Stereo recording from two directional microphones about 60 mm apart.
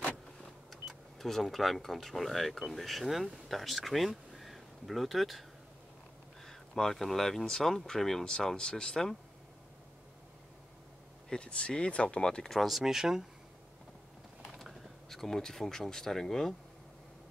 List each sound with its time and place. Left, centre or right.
1.1 s speech: centre
6.4 s speech: centre
11.2 s speech: centre
12.5 s speech: centre
14.5 s speech: centre